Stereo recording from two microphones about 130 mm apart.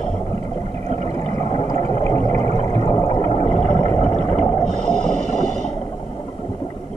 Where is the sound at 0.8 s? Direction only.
55° right (ahead or behind).